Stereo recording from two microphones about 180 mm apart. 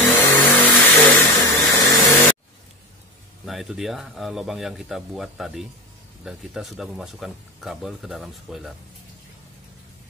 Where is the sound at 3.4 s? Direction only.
Centre (ahead or behind).